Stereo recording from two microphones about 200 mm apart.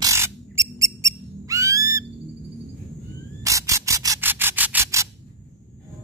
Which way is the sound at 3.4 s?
15° right (ahead or behind).